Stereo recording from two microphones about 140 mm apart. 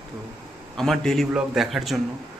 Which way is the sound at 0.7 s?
Centre (ahead or behind).